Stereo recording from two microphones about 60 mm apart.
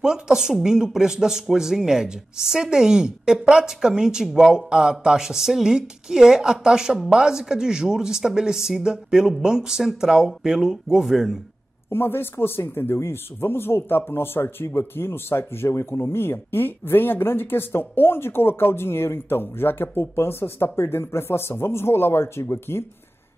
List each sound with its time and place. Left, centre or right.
0.0 s speech: centre
11.9 s speech: left